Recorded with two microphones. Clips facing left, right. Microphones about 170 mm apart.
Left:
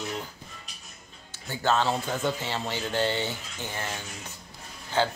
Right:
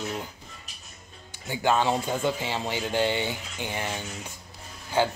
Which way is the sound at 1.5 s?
15° right (ahead or behind).